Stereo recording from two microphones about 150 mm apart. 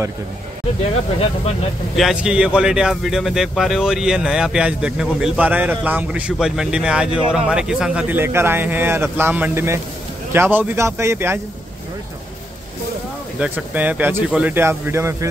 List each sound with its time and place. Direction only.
2.0 s speech: 5° right (ahead or behind)
13.4 s speech: 10° right (ahead or behind)